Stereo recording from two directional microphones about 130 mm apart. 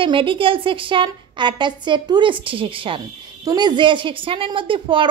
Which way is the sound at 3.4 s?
30° right (ahead or behind).